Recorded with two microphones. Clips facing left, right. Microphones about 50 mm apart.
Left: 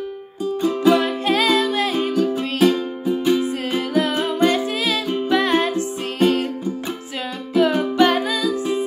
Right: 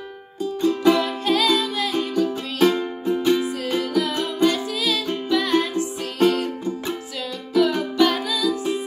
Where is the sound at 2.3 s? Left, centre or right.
Centre.